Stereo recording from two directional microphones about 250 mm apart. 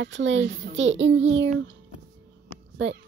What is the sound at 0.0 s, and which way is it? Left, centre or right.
A child's voice, right.